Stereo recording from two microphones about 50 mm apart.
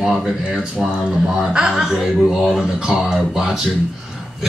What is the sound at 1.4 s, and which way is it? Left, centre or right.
A man's voice, centre.